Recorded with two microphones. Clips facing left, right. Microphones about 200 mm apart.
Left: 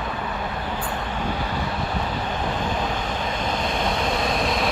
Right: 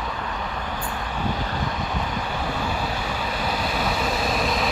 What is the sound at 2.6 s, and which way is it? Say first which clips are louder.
Vehicle: left 2 dB; 10° right (ahead or behind).